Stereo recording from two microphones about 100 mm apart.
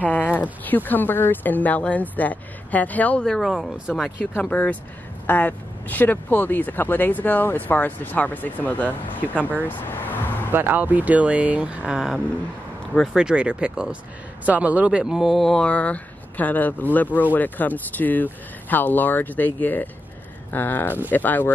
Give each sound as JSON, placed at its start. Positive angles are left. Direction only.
{"t": 0.0, "sound": "speech", "side_deg": 15}
{"t": 4.3, "sound": "speech", "side_deg": 15}
{"t": 9.7, "sound": "vehicle", "side_deg": 20}
{"t": 10.5, "sound": "speech", "side_deg": -20}